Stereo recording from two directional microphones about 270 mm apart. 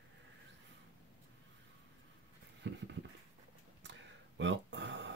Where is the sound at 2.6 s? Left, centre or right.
Right.